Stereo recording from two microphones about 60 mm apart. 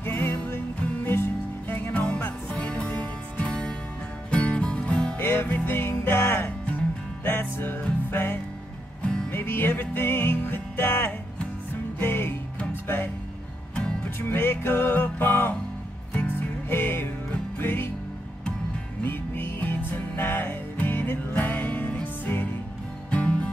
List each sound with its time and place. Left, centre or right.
0.0 s music: left
2.0 s music: left
3.4 s music: centre
5.1 s music: left
14.3 s music: left
19.0 s music: left
23.1 s music: left